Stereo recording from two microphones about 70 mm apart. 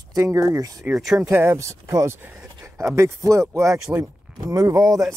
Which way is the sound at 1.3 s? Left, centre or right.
Right.